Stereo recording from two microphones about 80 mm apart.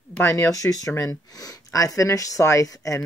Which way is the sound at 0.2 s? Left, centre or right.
Left.